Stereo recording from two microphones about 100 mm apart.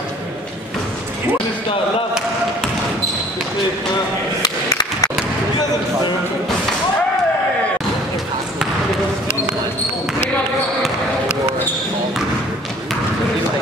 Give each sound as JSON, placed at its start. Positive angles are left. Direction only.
{"t": 4.4, "sound": "skateboard", "side_deg": 40}